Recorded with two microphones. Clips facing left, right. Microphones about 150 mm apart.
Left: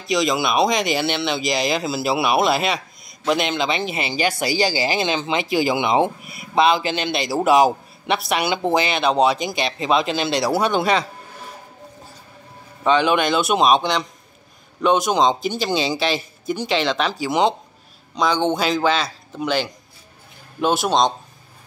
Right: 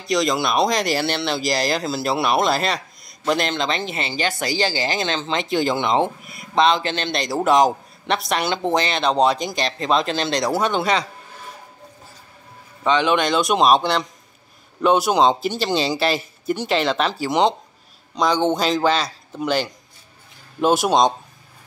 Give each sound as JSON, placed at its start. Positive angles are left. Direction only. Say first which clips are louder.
{"t": 0.0, "sound": "speech", "louder": "even", "side_deg": 0}
{"t": 13.1, "sound": "a man's voice", "louder": "even", "side_deg": 5}
{"t": 20.8, "sound": "a man's voice", "louder": "right 1 dB", "side_deg": -5}